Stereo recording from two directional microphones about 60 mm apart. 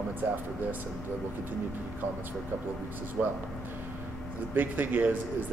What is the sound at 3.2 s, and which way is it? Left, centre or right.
Speech, centre.